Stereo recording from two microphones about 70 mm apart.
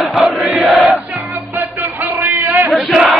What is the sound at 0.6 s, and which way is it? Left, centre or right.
Crowd, centre.